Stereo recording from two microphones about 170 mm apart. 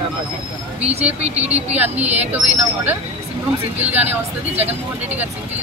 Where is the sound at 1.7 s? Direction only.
10° right (ahead or behind).